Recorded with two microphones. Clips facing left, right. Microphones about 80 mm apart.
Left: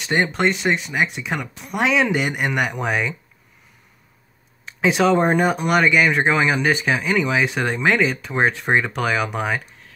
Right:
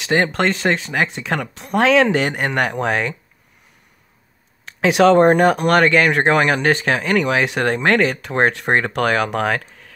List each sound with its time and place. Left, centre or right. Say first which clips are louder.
0.0 s speech: right 2 dB; right
2.2 s speech: right 2 dB; right
2.8 s speech: right 3 dB; right
4.8 s speech: right 5 dB; right